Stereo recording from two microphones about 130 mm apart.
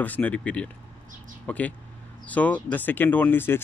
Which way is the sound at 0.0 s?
10° left (ahead or behind).